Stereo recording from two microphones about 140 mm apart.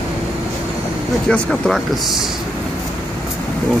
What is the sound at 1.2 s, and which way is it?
Speech, 5° left (ahead or behind).